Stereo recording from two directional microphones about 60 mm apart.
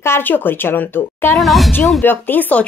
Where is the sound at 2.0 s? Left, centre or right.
Left.